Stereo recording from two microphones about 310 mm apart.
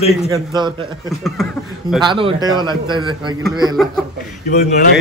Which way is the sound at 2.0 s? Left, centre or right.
Centre.